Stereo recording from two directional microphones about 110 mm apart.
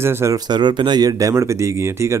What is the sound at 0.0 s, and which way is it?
Speech, 25° right (ahead or behind).